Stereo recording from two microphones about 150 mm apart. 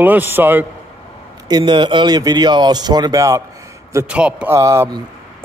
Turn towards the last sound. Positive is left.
turn(degrees=-25)  # may be behind; listen again after turning